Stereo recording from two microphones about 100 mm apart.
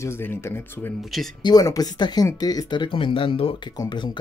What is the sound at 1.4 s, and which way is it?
Speech, 40° left (ahead or behind).